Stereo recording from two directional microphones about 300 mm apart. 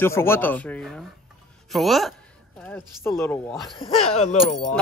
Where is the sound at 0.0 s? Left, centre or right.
Centre.